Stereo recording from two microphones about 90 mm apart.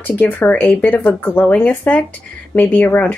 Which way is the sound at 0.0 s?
20° left (ahead or behind).